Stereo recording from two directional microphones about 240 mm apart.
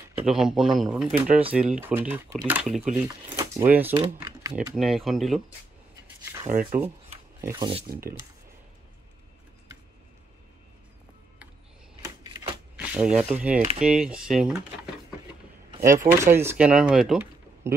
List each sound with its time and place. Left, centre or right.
0.2 s speech: centre
4.7 s speech: centre
6.5 s speech: right
7.4 s speech: centre
12.7 s speech: centre
16.1 s speech: centre